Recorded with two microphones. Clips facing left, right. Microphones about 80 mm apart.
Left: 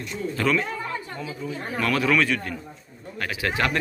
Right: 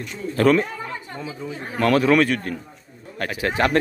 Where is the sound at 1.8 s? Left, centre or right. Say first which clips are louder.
Right 5 dB; right.